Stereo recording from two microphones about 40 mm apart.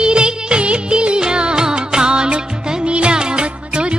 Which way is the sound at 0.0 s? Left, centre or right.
Right.